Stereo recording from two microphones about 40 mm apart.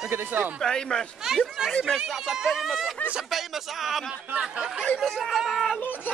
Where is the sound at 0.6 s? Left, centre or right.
Centre.